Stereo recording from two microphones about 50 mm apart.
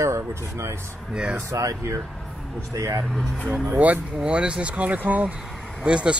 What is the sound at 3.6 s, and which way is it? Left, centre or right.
Speech, right.